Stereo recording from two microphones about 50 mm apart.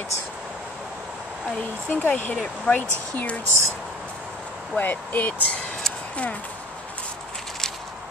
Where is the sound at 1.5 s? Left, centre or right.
Left.